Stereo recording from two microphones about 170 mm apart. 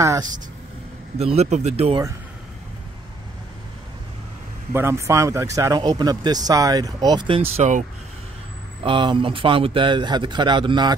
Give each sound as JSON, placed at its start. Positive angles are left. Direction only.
{"t": 1.1, "sound": "speech", "side_deg": -40}
{"t": 4.7, "sound": "speech", "side_deg": -15}
{"t": 8.8, "sound": "speech", "side_deg": -30}